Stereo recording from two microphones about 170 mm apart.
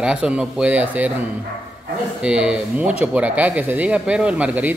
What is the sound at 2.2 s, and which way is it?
A man's voice, 5° right (ahead or behind).